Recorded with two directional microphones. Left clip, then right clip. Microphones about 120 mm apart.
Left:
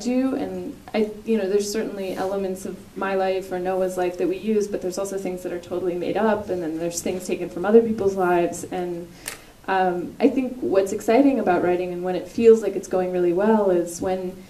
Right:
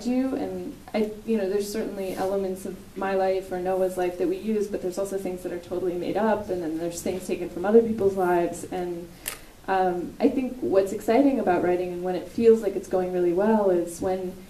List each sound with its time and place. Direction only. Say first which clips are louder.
0.0 s speech: left 3 dB; 20° left (ahead or behind)
9.7 s speech: left 2 dB; 20° left (ahead or behind)